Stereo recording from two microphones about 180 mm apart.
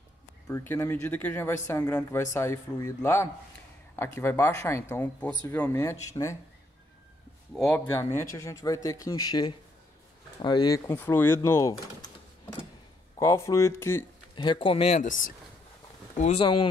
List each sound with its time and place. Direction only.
0.5 s speech: 15° left (ahead or behind)
8.0 s speech: 15° left (ahead or behind)
14.3 s speech: 25° left (ahead or behind)
16.2 s speech: 35° left (ahead or behind)